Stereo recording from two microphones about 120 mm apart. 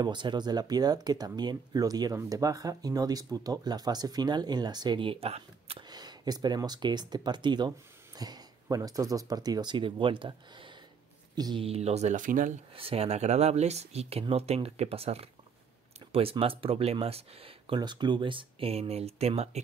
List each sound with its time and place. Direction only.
0.0 s speech: 40° right (ahead or behind)
5.9 s speech: 35° right (ahead or behind)
11.6 s speech: 60° right (ahead or behind); by 12.5 s 90° right
12.7 s speech: 55° right (ahead or behind)
17.7 s speech: 40° right (ahead or behind); by 19.6 s 65° right (ahead or behind)